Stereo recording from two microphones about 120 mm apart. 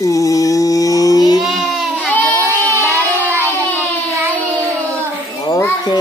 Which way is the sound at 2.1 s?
15° left (ahead or behind).